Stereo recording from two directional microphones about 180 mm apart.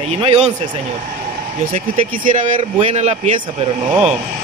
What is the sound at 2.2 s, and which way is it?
Speech, 45° right (ahead or behind).